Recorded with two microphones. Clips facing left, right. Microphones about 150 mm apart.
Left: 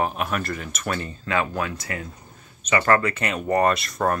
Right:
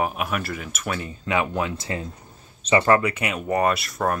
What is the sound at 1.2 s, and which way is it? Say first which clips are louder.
Speech: right 2 dB; 20° right (ahead or behind).